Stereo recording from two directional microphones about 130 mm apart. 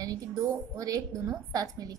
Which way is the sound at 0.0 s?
30° right (ahead or behind).